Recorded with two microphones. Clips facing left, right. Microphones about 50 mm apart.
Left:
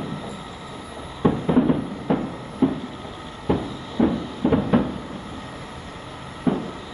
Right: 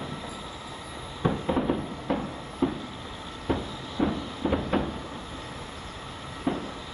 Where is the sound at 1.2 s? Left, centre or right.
Centre.